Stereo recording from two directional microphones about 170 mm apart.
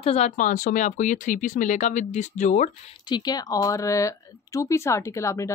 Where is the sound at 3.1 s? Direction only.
25° left (ahead or behind).